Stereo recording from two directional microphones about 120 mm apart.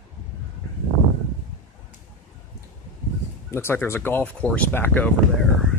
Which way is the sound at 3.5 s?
20° left (ahead or behind).